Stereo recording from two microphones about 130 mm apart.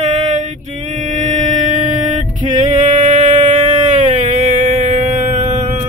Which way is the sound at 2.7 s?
70° right (ahead or behind).